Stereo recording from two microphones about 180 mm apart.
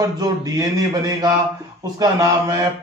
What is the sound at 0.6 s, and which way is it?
A man's voice, 20° right (ahead or behind).